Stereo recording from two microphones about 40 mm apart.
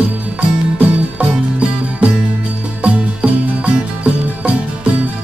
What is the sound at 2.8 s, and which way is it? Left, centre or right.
Music, right.